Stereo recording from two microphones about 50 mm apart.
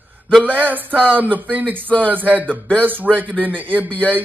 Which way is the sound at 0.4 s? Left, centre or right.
Right.